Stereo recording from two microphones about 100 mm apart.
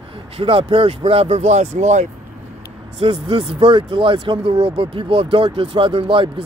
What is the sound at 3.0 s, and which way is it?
Speech, 70° right (ahead or behind).